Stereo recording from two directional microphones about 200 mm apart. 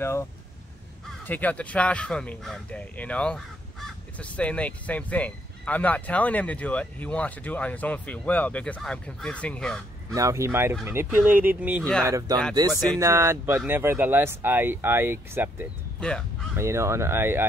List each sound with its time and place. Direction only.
0.0 s speech: 10° left (ahead or behind)
10.1 s speech: 15° right (ahead or behind)
16.0 s speech: 5° left (ahead or behind)
16.5 s speech: 15° right (ahead or behind)